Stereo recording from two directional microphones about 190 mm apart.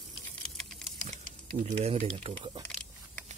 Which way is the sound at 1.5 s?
30° right (ahead or behind).